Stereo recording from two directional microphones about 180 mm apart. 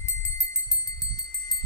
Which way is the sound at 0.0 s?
15° left (ahead or behind).